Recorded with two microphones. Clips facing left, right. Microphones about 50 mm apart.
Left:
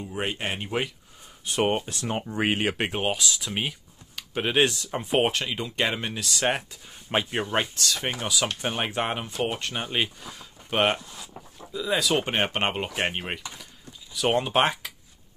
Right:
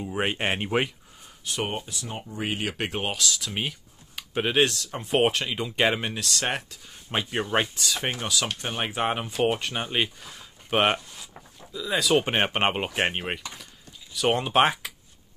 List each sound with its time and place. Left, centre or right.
0.2 s speech: right
1.4 s speech: left
1.9 s speech: left
2.9 s speech: centre
4.1 s a sound: centre
4.6 s speech: centre
5.1 s speech: centre
5.8 s speech: centre
8.3 s speech: centre
12.5 s speech: centre